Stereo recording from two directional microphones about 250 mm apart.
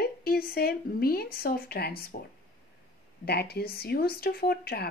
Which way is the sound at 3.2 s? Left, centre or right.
Left.